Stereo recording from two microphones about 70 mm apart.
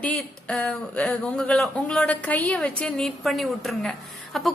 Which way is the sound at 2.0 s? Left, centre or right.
Left.